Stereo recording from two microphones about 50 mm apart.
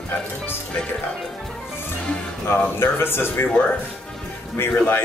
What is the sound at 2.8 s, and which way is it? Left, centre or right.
Speech, left.